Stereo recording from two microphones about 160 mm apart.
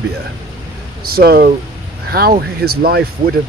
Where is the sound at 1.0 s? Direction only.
70° right (ahead or behind).